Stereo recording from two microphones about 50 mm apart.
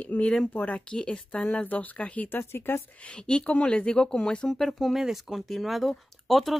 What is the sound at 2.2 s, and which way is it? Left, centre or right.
Speech, left.